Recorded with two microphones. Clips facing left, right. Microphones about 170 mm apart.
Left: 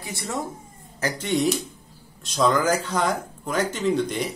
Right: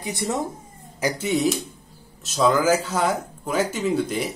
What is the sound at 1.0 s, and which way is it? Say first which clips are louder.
Speech: right 1 dB; 5° right (ahead or behind).